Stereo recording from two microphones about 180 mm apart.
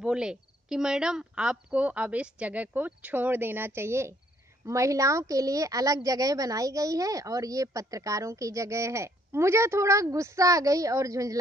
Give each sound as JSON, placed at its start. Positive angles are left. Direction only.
{"t": 0.0, "sound": "a woman's voice", "side_deg": -5}